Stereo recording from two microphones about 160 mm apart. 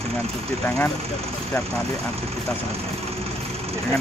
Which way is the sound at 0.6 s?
15° left (ahead or behind).